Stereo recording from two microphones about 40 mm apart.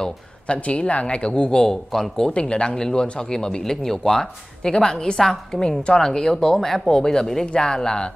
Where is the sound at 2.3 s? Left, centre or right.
Left.